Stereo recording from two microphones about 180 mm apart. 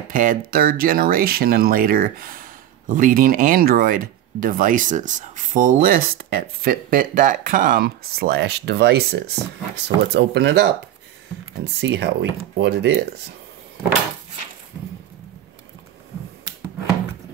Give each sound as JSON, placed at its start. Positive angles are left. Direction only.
{"t": 0.1, "sound": "speech", "side_deg": -50}
{"t": 11.8, "sound": "speech", "side_deg": -75}